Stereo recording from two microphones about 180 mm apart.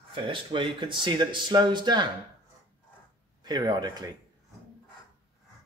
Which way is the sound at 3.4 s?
20° right (ahead or behind).